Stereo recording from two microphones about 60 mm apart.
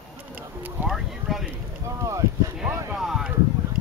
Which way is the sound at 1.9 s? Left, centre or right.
Right.